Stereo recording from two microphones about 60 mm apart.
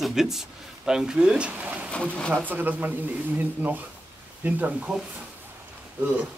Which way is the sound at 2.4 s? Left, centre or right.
Right.